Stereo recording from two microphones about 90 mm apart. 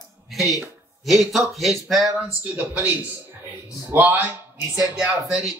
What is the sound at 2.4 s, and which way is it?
A man's voice, 15° right (ahead or behind).